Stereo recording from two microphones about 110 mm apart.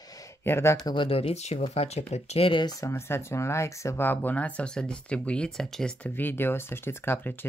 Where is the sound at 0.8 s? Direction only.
50° left (ahead or behind); by 2.5 s 70° left (ahead or behind).